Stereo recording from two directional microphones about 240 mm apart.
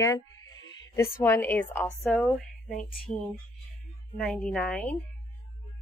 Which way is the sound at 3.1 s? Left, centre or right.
Left.